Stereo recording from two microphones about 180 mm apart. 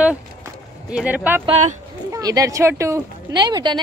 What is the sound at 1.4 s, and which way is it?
Speech, 35° right (ahead or behind).